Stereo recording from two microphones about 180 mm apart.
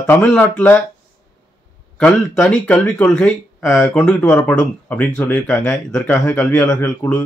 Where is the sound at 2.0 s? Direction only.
5° left (ahead or behind).